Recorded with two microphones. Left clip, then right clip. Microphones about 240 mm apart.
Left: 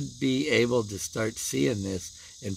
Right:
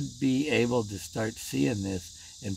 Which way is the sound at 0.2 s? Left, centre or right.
Centre.